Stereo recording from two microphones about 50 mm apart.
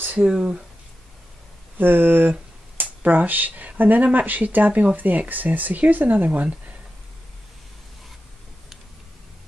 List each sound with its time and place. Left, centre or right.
0.2 s speech: right
1.8 s speech: right
2.8 s speech: right